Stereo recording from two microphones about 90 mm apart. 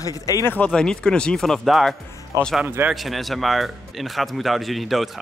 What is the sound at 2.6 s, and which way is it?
Speech, 25° right (ahead or behind).